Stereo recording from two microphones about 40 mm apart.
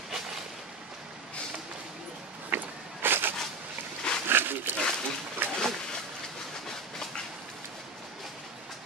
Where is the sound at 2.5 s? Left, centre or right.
Right.